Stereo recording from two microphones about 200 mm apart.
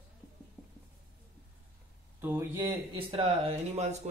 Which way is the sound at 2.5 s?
25° right (ahead or behind).